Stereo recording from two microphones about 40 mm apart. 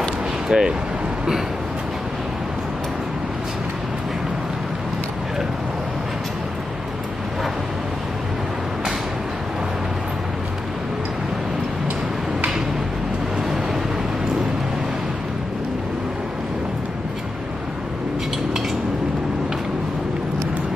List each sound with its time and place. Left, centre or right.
0.5 s speech: centre